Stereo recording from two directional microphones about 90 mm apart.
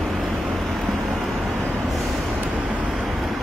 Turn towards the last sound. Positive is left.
turn(degrees=-10)  # may be behind; listen again after turning